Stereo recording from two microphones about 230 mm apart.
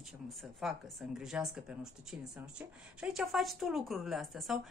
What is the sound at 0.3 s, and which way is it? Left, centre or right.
A woman's voice, centre.